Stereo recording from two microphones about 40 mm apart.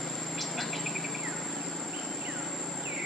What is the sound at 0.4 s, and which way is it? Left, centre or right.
Cricket, centre.